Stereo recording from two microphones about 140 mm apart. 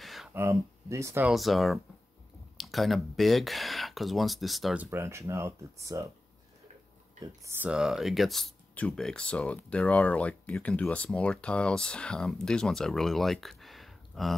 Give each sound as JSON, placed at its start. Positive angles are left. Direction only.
{"t": 0.0, "sound": "a sound", "side_deg": 0}
{"t": 0.3, "sound": "speech", "side_deg": -20}
{"t": 1.2, "sound": "speech", "side_deg": 0}
{"t": 4.7, "sound": "speech", "side_deg": -15}
{"t": 7.4, "sound": "speech", "side_deg": -15}